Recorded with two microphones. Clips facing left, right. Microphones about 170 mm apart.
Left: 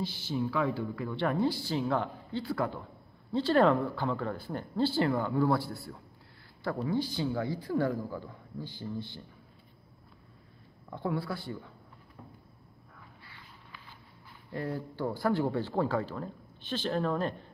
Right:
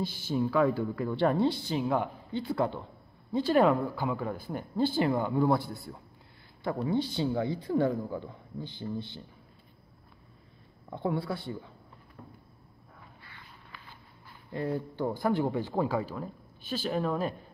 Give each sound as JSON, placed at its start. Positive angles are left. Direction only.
{"t": 0.0, "sound": "speech", "side_deg": -50}
{"t": 1.2, "sound": "speech", "side_deg": -30}
{"t": 3.3, "sound": "a man's voice", "side_deg": -15}
{"t": 10.9, "sound": "speech", "side_deg": -25}
{"t": 14.5, "sound": "a man's voice", "side_deg": -20}